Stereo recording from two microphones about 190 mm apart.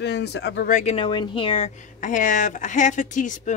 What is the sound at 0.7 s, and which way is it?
Speech, 40° left (ahead or behind).